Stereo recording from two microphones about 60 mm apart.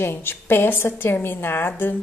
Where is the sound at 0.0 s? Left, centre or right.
Left.